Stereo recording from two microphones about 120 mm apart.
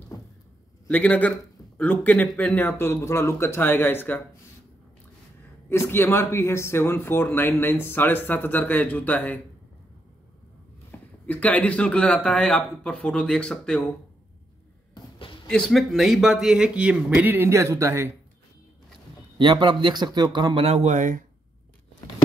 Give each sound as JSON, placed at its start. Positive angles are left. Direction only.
{"t": 0.1, "sound": "a sound", "side_deg": 30}
{"t": 0.8, "sound": "speech", "side_deg": 10}
{"t": 5.7, "sound": "speech", "side_deg": 20}
{"t": 10.9, "sound": "speech", "side_deg": 10}
{"t": 15.0, "sound": "a sound", "side_deg": 45}
{"t": 15.4, "sound": "speech", "side_deg": 5}
{"t": 19.3, "sound": "a man's voice", "side_deg": -45}
{"t": 20.6, "sound": "speech", "side_deg": -65}